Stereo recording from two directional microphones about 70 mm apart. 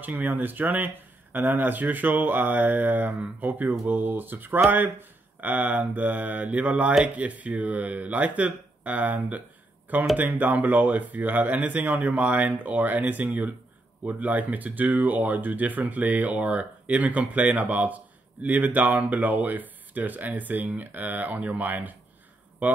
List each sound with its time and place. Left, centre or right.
0.0 s speech: right